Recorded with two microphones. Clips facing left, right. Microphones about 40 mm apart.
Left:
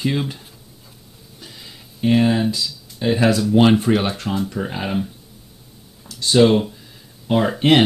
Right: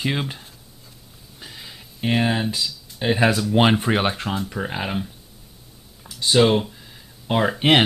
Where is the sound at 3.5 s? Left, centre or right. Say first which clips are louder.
Left 4 dB; right.